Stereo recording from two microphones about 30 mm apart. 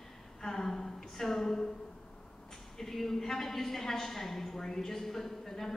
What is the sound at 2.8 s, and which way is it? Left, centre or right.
A woman's voice, centre.